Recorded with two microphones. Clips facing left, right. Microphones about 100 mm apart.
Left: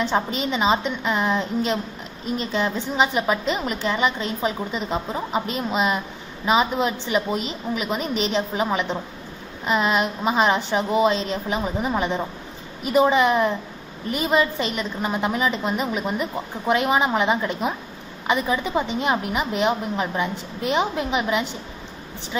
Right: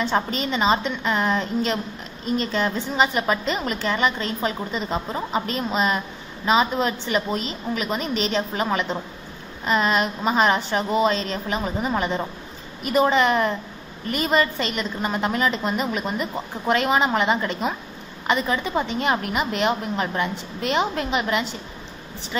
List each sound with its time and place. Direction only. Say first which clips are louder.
0.0 s a woman's voice: even; 10° left (ahead or behind)